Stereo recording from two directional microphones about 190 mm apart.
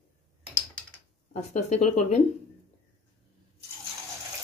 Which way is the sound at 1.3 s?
40° left (ahead or behind).